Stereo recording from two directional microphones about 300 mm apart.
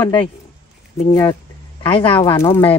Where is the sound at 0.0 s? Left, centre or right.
Centre.